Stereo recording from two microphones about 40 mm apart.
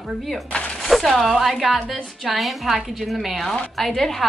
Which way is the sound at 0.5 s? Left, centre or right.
Left.